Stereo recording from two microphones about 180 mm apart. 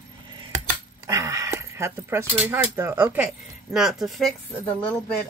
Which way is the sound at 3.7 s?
Centre (ahead or behind).